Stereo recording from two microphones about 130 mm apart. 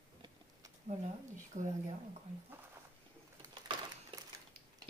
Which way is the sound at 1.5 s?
65° right (ahead or behind).